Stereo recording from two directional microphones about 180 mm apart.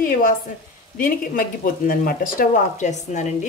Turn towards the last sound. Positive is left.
turn(degrees=40)  # may be behind; listen again after turning